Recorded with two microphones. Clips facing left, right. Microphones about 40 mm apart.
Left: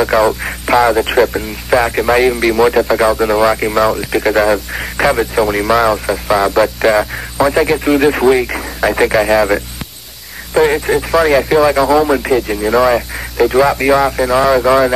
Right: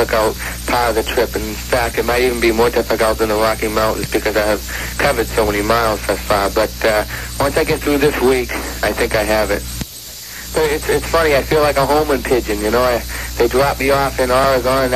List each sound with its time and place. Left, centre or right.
0.0 s speech: centre
10.9 s speech: centre